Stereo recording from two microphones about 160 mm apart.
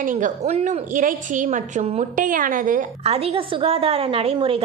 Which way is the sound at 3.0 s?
40° right (ahead or behind).